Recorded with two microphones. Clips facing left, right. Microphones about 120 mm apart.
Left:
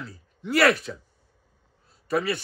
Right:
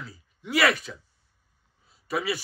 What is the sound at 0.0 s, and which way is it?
A man's voice, centre (ahead or behind).